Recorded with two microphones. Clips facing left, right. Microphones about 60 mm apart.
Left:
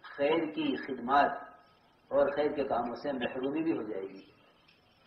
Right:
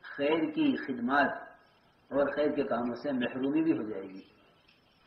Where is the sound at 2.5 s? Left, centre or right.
Right.